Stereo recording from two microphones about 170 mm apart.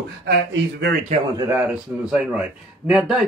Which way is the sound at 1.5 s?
10° right (ahead or behind).